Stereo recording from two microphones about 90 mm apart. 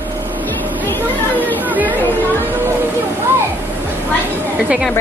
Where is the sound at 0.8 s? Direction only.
20° left (ahead or behind).